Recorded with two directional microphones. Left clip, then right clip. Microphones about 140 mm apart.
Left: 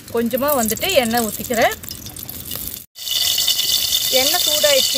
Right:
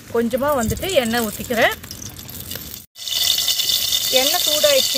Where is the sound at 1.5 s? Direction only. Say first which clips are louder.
Even; 5° right (ahead or behind).